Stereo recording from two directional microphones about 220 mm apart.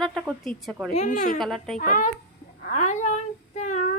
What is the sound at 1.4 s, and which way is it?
Speech, centre (ahead or behind).